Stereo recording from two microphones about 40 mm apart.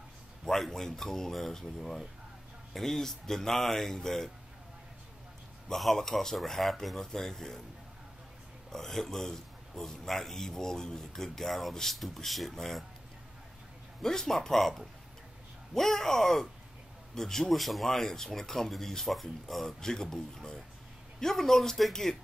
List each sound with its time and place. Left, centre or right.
0.5 s a man's voice: centre
5.7 s speech: centre
7.0 s a man's voice: centre
8.7 s a man's voice: centre
14.0 s a man's voice: centre